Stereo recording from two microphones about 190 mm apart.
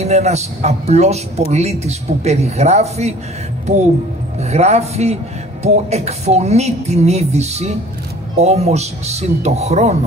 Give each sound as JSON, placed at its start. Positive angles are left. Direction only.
{"t": 0.0, "sound": "speech", "side_deg": -35}
{"t": 4.4, "sound": "speech", "side_deg": -35}